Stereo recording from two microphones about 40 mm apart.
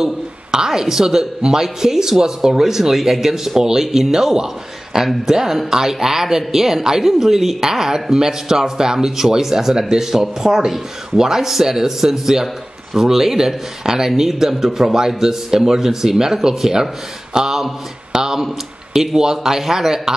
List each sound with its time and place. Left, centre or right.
0.0 s speech: centre